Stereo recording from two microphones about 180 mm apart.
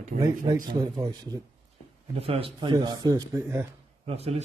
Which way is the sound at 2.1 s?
30° right (ahead or behind).